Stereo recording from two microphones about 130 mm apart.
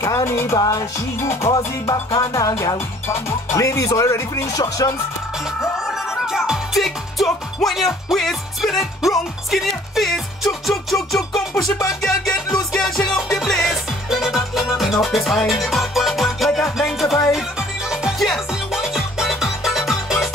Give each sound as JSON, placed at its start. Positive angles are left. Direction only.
{"t": 0.0, "sound": "music", "side_deg": 25}
{"t": 5.6, "sound": "music", "side_deg": -5}